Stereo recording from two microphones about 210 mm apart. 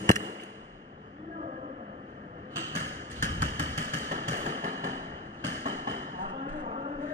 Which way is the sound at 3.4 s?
35° right (ahead or behind).